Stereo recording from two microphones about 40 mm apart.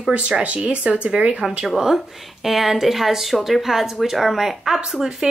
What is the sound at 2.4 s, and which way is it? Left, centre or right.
A woman's voice, centre.